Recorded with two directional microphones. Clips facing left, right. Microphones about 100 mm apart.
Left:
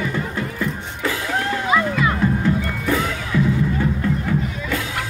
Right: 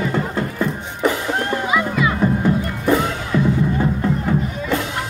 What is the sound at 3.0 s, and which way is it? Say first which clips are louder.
Music: right 2 dB; 30° right (ahead or behind).